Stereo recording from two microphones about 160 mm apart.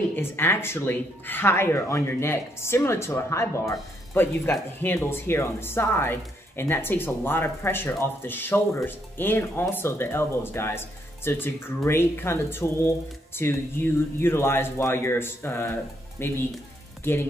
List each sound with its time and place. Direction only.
0.1 s speech: 15° left (ahead or behind)